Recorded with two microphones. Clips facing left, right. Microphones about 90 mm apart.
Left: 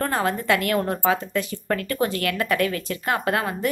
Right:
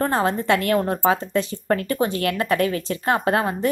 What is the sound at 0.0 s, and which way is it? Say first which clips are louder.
Speech: right 3 dB; 25° right (ahead or behind).